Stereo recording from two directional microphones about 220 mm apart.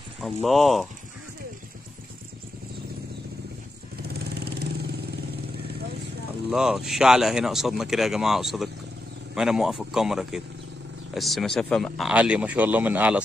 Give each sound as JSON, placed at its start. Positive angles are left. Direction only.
{"t": 0.2, "sound": "speech", "side_deg": 0}
{"t": 4.1, "sound": "vehicle", "side_deg": -45}
{"t": 6.5, "sound": "speech", "side_deg": 0}